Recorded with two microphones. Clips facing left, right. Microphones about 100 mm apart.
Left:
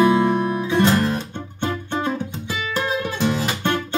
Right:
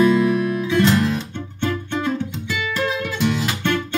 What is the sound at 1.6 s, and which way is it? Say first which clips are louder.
Music: right 1 dB; 15° left (ahead or behind).